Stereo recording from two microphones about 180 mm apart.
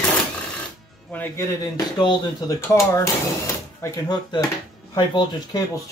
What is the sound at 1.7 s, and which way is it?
Speech, 20° left (ahead or behind).